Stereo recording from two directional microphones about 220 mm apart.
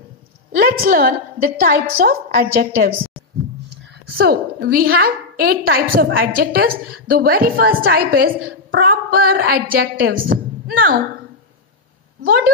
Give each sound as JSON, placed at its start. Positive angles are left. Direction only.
{"t": 0.7, "sound": "a woman's voice", "side_deg": -40}
{"t": 12.2, "sound": "speech", "side_deg": -40}